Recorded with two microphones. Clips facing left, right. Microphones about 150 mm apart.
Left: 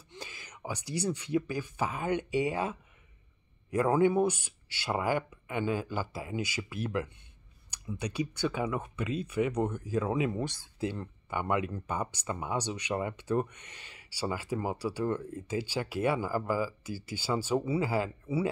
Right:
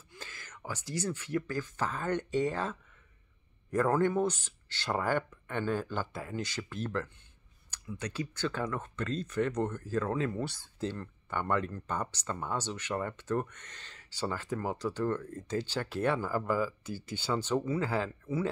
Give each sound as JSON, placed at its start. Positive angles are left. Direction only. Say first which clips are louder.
{"t": 0.1, "sound": "speech", "louder": "left 3 dB", "side_deg": 15}